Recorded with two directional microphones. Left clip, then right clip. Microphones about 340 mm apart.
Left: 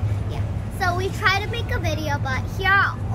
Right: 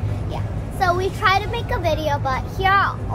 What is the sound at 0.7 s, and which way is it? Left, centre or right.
Speech, centre.